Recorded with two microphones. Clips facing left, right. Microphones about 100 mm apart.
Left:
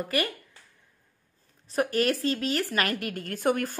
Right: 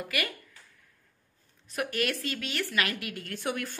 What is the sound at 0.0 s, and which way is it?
Speech, 35° left (ahead or behind).